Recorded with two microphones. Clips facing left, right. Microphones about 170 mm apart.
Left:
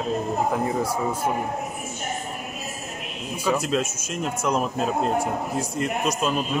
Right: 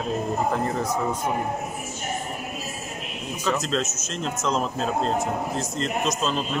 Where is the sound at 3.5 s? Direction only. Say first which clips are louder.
Left 2 dB; 10° left (ahead or behind).